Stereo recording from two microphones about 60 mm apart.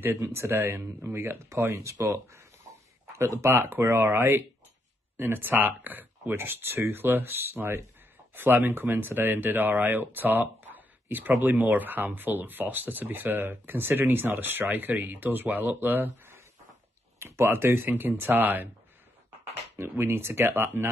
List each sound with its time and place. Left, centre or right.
0.0 s speech: right
1.8 s speech: right
17.2 s speech: right
19.8 s speech: right